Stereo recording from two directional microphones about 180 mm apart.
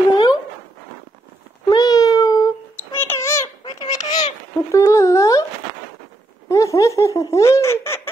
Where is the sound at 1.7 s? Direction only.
20° left (ahead or behind).